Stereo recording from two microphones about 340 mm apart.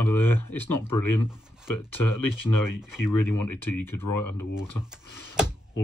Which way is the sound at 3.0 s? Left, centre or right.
Left.